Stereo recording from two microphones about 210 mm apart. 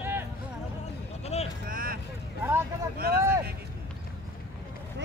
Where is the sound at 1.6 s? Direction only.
40° right (ahead or behind).